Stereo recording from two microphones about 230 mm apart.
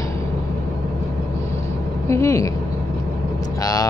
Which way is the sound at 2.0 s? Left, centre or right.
Centre.